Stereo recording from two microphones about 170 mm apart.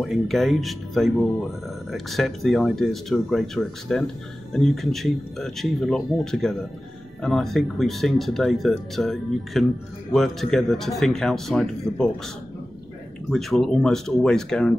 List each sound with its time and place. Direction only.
0.0 s speech: centre (ahead or behind)
13.3 s speech: centre (ahead or behind)